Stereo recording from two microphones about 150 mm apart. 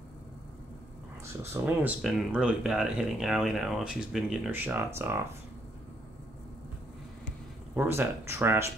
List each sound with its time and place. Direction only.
1.2 s speech: 20° right (ahead or behind)
2.0 s speech: 5° right (ahead or behind)
4.5 s speech: 15° right (ahead or behind)
7.7 s speech: 15° right (ahead or behind)